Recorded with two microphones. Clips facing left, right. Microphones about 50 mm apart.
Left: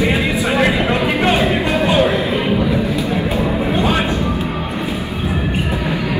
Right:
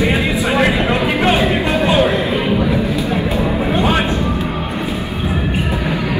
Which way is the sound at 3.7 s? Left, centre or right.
Right.